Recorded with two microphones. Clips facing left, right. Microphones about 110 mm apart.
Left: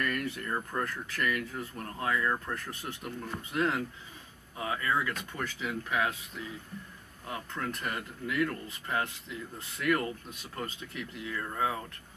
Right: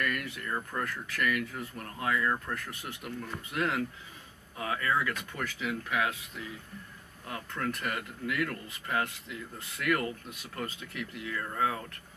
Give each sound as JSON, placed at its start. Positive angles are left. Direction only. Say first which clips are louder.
{"t": 0.0, "sound": "speech", "louder": "left 1 dB", "side_deg": 35}
{"t": 2.2, "sound": "speech", "louder": "even", "side_deg": 10}
{"t": 2.5, "sound": "speech", "louder": "even", "side_deg": 30}
{"t": 7.2, "sound": "speech", "louder": "right 1 dB", "side_deg": 20}